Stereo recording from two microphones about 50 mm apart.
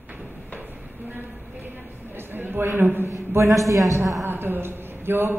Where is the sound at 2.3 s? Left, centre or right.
Right.